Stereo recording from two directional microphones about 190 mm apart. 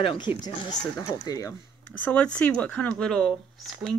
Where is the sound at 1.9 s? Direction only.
5° left (ahead or behind).